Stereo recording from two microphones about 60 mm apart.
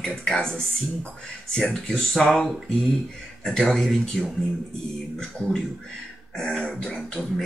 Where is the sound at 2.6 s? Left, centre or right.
Centre.